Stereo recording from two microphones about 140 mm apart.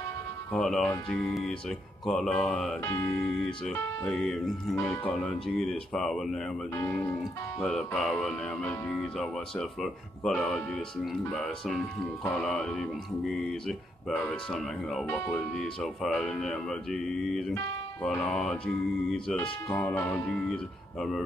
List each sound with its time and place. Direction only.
0.5 s speech: 5° left (ahead or behind)
2.8 s speech: 20° left (ahead or behind)
3.4 s speech: 5° left (ahead or behind)
4.7 s speech: 15° left (ahead or behind)
6.8 s speech: 20° left (ahead or behind)
7.6 s speech: centre (ahead or behind)
15.0 s speech: 15° left (ahead or behind)
15.3 s speech: 5° left (ahead or behind)